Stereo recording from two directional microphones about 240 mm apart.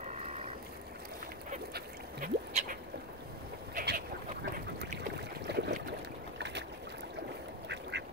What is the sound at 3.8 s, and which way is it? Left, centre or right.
Duck, right.